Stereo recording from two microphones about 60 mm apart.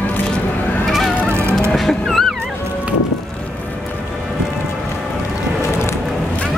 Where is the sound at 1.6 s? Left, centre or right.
Centre.